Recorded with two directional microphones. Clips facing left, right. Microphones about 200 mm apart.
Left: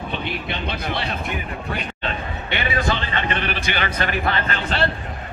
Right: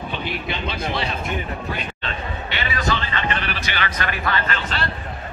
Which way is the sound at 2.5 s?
55° left (ahead or behind).